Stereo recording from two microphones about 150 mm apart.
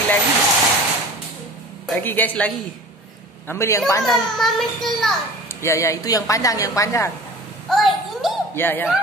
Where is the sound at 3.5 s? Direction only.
20° left (ahead or behind).